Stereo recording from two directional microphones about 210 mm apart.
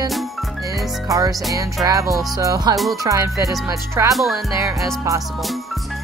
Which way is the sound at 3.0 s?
15° right (ahead or behind).